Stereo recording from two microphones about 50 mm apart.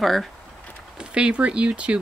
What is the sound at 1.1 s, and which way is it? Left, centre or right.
Speech, right.